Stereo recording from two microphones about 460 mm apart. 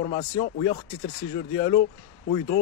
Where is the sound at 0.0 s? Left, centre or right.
Centre.